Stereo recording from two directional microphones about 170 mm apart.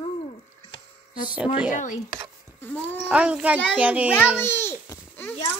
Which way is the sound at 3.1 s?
5° right (ahead or behind).